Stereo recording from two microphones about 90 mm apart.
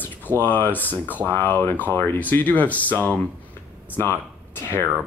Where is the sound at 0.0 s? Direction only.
20° left (ahead or behind).